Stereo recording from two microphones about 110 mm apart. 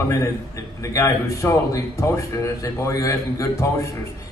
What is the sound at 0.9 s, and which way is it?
A man's voice, 25° left (ahead or behind).